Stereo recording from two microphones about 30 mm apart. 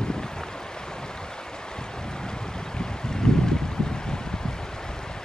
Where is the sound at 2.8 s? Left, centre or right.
Left.